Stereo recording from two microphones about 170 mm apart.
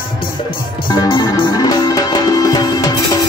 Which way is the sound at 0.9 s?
25° left (ahead or behind).